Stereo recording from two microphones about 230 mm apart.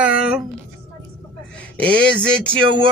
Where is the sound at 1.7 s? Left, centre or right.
Centre.